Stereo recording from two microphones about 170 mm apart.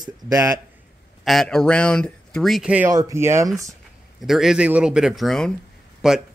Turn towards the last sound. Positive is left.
turn(degrees=-5)  # may be behind; listen again after turning